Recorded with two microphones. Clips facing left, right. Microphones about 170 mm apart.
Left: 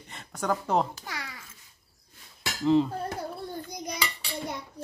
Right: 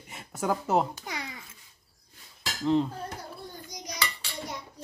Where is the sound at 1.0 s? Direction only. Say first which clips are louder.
Right 2 dB; 20° right (ahead or behind).